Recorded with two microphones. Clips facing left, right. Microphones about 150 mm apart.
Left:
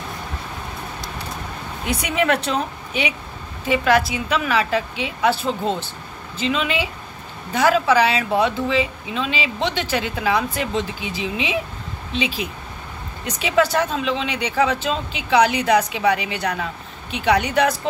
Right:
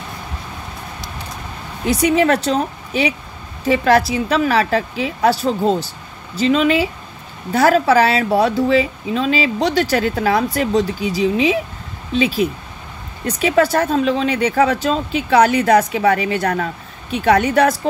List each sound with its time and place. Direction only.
1.9 s speech: 30° right (ahead or behind)